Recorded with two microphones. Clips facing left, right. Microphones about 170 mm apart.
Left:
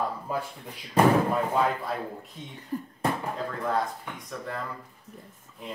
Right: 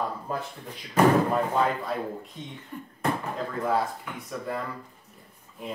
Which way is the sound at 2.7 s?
35° left (ahead or behind).